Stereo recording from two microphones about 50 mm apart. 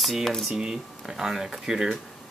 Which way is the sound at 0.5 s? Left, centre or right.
Centre.